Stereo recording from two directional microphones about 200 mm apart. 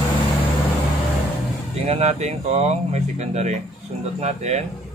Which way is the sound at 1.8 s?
35° right (ahead or behind).